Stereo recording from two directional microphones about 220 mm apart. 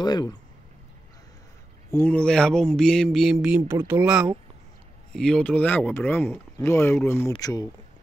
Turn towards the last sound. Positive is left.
turn(degrees=15)  # may be behind; listen again after turning